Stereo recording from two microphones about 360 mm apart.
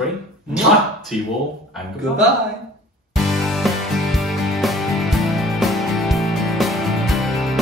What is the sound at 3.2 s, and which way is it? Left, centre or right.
Music, centre.